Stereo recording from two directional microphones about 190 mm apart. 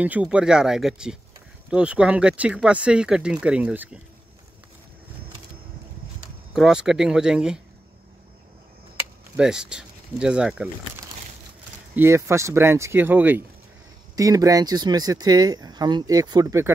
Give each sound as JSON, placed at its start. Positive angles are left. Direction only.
{"t": 0.0, "sound": "speech", "side_deg": -5}
{"t": 6.5, "sound": "speech", "side_deg": -5}
{"t": 9.4, "sound": "speech", "side_deg": -5}
{"t": 11.9, "sound": "speech", "side_deg": -10}